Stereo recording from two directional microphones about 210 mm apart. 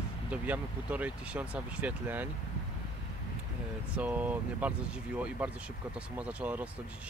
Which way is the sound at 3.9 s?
5° right (ahead or behind).